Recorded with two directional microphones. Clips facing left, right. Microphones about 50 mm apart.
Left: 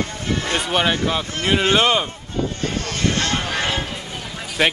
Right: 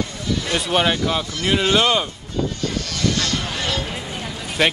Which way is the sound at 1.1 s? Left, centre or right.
Centre.